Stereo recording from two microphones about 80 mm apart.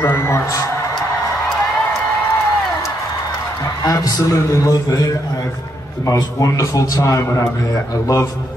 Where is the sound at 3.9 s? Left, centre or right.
Left.